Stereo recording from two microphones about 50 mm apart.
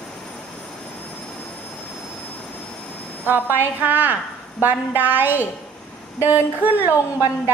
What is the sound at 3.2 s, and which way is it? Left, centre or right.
A woman's voice, right.